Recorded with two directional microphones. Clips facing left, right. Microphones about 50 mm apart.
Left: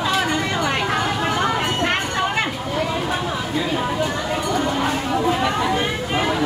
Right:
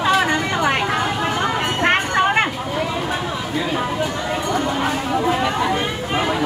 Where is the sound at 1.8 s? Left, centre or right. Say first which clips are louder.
Right 4 dB; right.